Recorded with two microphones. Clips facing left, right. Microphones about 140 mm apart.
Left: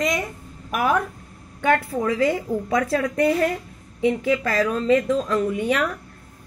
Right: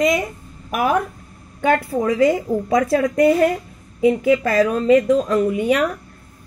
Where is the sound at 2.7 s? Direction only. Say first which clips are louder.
Right 5 dB; 35° right (ahead or behind).